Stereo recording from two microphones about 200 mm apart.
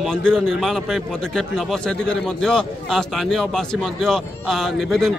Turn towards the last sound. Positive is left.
turn(degrees=0)  # may be behind; listen again after turning